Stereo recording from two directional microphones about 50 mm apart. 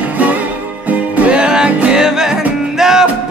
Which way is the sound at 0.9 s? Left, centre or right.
Right.